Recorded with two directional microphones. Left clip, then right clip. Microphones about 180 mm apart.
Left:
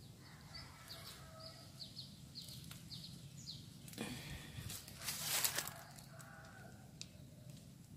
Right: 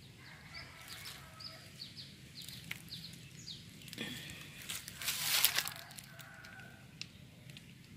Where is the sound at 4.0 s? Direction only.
Centre (ahead or behind).